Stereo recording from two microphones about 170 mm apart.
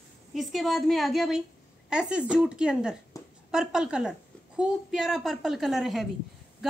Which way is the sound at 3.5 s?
5° right (ahead or behind).